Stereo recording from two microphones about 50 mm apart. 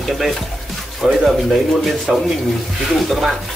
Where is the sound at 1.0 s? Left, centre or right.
Centre.